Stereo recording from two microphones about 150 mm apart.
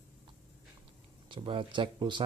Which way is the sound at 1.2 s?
35° right (ahead or behind).